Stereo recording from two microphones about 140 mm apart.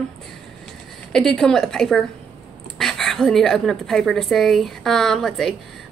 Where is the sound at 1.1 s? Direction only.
Centre (ahead or behind).